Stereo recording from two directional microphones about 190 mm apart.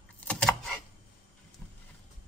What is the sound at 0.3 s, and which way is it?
Typewriter, 5° left (ahead or behind).